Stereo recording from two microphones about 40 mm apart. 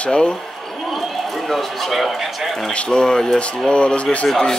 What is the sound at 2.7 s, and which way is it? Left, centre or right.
Speech, left.